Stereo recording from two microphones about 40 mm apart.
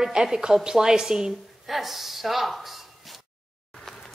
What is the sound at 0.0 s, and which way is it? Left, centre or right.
A woman's voice, centre.